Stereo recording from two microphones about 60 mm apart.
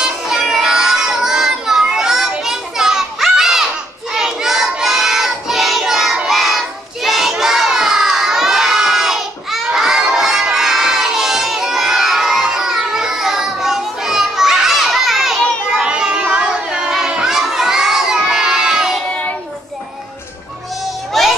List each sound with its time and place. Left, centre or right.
0.0 s child singing: centre
16.9 s children shouting: centre
21.2 s a sound: centre